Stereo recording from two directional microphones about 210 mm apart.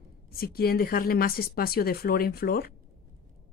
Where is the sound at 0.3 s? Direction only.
45° left (ahead or behind).